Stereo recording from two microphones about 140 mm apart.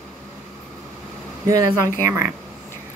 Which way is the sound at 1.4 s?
25° right (ahead or behind).